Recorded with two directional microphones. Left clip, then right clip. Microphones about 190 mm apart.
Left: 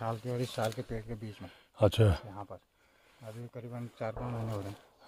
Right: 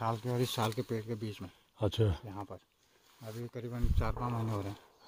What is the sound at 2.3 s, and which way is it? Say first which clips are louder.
Speech: even; 50° right (ahead or behind).